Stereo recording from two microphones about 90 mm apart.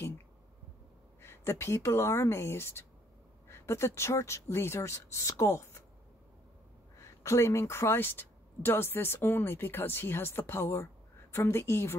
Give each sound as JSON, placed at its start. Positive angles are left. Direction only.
{"t": 1.2, "sound": "speech", "side_deg": 30}
{"t": 7.0, "sound": "speech", "side_deg": 30}